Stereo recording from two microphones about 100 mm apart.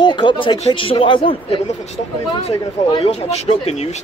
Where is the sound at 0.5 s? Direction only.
75° left (ahead or behind).